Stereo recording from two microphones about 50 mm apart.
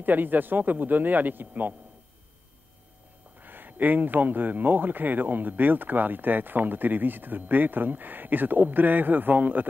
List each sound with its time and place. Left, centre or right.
0.0 s speech: right
3.3 s speech: right